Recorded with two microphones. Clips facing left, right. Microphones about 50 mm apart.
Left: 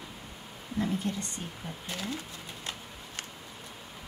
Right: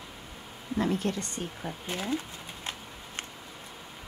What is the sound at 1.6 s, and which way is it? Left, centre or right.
Speech, right.